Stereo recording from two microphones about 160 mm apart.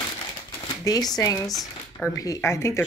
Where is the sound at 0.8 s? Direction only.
25° left (ahead or behind).